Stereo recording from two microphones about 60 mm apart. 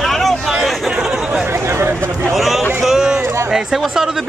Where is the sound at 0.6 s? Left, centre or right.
Centre.